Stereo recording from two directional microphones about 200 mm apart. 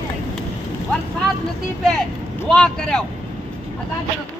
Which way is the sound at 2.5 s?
5° left (ahead or behind).